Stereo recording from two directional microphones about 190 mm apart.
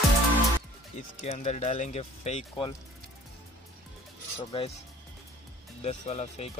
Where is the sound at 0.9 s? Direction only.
35° left (ahead or behind).